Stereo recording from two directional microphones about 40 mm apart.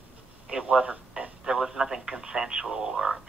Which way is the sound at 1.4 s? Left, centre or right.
Centre.